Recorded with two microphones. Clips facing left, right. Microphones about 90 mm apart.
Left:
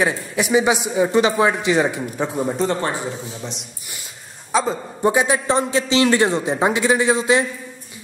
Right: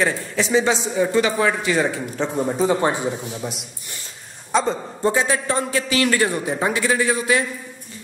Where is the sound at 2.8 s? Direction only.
20° right (ahead or behind); by 4.8 s centre (ahead or behind).